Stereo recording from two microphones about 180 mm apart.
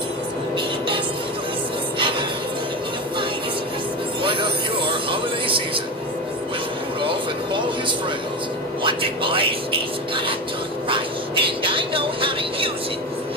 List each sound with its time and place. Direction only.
2.0 s music: 30° right (ahead or behind)
4.2 s vehicle: 30° right (ahead or behind)
7.0 s music: 30° right (ahead or behind)
8.8 s speech: 30° right (ahead or behind)
10.9 s vehicle: 30° right (ahead or behind)